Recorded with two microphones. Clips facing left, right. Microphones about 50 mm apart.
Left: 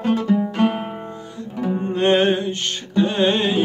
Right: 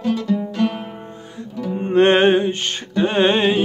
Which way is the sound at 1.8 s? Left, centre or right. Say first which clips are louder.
Right 4 dB; right.